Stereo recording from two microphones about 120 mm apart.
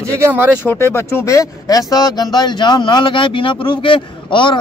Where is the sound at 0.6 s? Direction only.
20° left (ahead or behind); by 4.6 s 45° left (ahead or behind).